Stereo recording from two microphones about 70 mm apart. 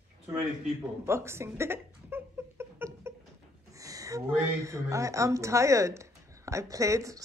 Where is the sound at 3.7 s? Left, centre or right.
Right.